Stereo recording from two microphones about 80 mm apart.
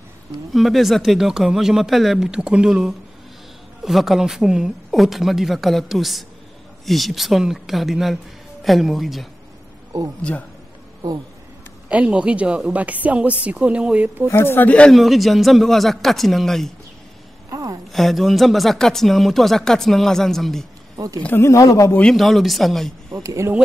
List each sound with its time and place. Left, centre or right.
0.5 s speech: centre
11.9 s speech: centre
14.3 s speech: left
14.9 s speech: centre
17.5 s a sound: right
17.9 s speech: centre
21.4 s speech: left
22.1 s speech: centre
23.1 s speech: right